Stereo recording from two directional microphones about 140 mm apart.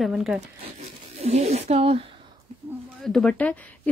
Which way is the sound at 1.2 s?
50° right (ahead or behind).